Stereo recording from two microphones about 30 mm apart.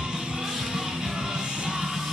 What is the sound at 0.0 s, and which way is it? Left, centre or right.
Music, right.